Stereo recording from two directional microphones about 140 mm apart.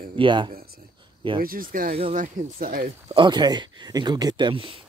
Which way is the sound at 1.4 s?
90° right.